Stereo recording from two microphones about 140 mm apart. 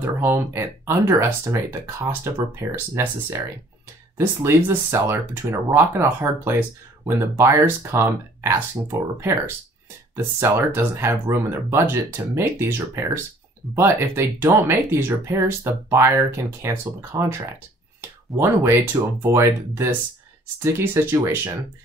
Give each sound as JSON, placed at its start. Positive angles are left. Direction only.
{"t": 0.0, "sound": "speech", "side_deg": -15}
{"t": 10.1, "sound": "speech", "side_deg": -15}
{"t": 18.4, "sound": "speech", "side_deg": -15}